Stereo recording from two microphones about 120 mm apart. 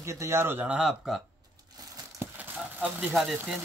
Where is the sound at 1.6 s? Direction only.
30° right (ahead or behind).